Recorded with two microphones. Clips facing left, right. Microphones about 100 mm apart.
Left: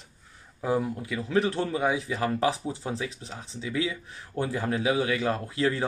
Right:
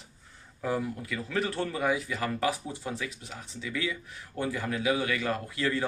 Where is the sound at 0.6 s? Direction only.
20° left (ahead or behind).